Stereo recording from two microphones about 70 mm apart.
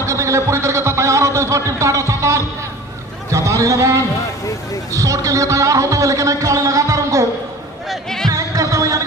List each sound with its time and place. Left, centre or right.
0.0 s a sound: right
4.9 s a man's voice: right
7.9 s music: centre
8.3 s music: right